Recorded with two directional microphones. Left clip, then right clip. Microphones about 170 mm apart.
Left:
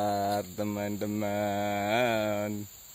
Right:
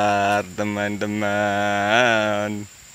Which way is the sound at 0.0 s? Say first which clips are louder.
Right 10 dB; centre (ahead or behind).